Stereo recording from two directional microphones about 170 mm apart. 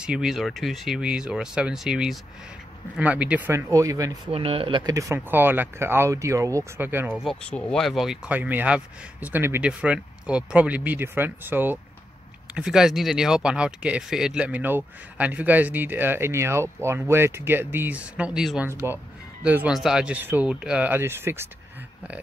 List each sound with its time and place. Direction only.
0.0 s speech: 5° right (ahead or behind); by 4.1 s 20° right (ahead or behind)
4.3 s speech: 35° right (ahead or behind); by 7.2 s 10° right (ahead or behind)
7.2 s speech: 5° left (ahead or behind)
18.7 s speech: 15° right (ahead or behind)